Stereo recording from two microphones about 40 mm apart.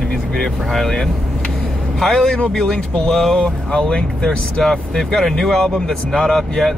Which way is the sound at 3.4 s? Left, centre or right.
Left.